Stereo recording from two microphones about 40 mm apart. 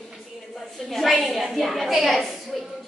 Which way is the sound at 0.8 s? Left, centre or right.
Centre.